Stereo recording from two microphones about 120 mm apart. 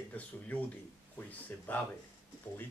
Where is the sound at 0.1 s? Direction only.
15° left (ahead or behind).